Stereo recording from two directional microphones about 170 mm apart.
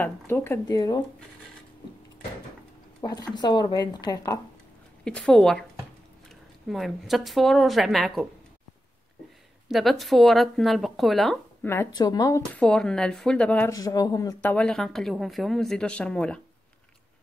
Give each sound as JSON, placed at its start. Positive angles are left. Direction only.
{"t": 0.0, "sound": "speech", "side_deg": 15}
{"t": 3.0, "sound": "a woman's voice", "side_deg": 25}
{"t": 5.0, "sound": "speech", "side_deg": 5}
{"t": 6.7, "sound": "speech", "side_deg": 0}
{"t": 9.7, "sound": "speech", "side_deg": 0}
{"t": 11.6, "sound": "a woman's voice", "side_deg": 15}
{"t": 12.5, "sound": "speech", "side_deg": 5}
{"t": 13.7, "sound": "a woman's voice", "side_deg": 20}
{"t": 14.5, "sound": "speech", "side_deg": 5}